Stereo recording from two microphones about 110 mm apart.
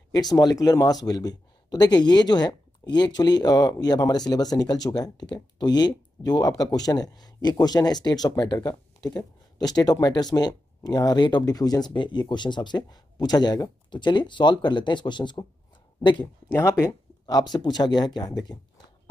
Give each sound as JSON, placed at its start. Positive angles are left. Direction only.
{"t": 0.1, "sound": "speech", "side_deg": 40}
{"t": 16.4, "sound": "speech", "side_deg": 20}
{"t": 17.3, "sound": "speech", "side_deg": 40}